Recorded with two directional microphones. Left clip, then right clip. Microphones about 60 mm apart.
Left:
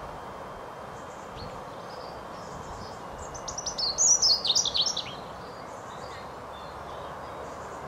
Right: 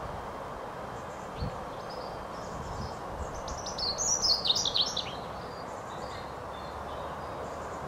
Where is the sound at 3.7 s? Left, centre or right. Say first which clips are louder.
Left 7 dB; centre.